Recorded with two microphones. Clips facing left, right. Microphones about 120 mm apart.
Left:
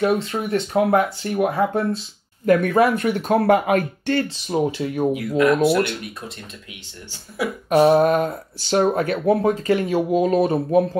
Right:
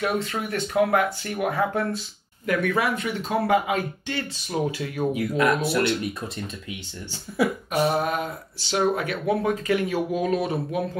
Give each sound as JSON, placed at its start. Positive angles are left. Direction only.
{"t": 0.0, "sound": "speech", "side_deg": 25}
{"t": 2.4, "sound": "speech", "side_deg": 45}
{"t": 4.3, "sound": "speech", "side_deg": 25}
{"t": 5.6, "sound": "speech", "side_deg": 60}
{"t": 7.7, "sound": "speech", "side_deg": 55}
{"t": 8.9, "sound": "speech", "side_deg": 30}